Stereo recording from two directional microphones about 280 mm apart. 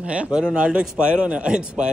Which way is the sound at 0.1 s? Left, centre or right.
Centre.